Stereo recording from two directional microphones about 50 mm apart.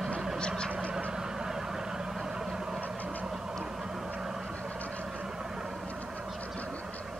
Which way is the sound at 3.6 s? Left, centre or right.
Centre.